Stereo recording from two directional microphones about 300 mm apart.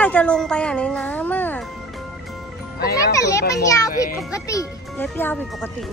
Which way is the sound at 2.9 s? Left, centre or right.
Centre.